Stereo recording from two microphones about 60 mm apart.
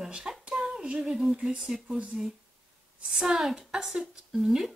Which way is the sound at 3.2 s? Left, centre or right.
Centre.